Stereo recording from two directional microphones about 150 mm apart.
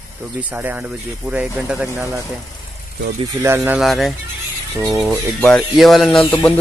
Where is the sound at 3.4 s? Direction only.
15° right (ahead or behind).